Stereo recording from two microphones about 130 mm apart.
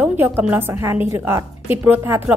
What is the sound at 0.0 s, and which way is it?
A woman's voice, 15° right (ahead or behind).